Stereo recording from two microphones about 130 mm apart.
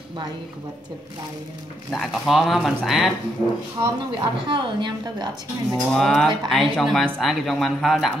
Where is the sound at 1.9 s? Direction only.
Centre (ahead or behind).